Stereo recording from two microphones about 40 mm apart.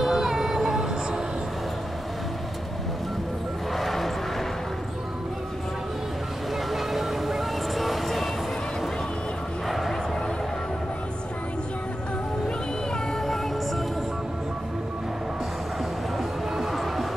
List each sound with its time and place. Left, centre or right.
0.0 s child singing: centre
3.7 s vehicle: centre
6.7 s vehicle: centre
9.7 s a sound: centre
15.8 s music: centre